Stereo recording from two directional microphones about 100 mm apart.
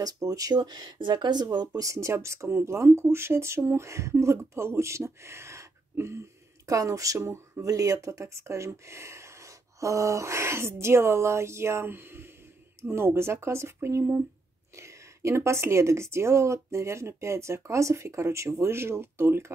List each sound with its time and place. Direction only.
0.0 s speech: 35° right (ahead or behind)
1.8 s speech: 30° right (ahead or behind)